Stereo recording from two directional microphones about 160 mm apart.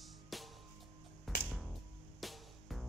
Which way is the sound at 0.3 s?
Centre (ahead or behind).